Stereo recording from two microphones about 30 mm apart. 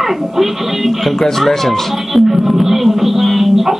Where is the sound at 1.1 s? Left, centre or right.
Centre.